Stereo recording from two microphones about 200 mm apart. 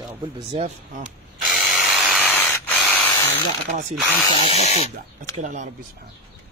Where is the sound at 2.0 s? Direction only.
Centre (ahead or behind).